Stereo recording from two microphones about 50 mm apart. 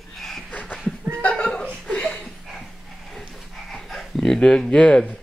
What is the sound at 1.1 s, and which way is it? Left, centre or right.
Laughter, left.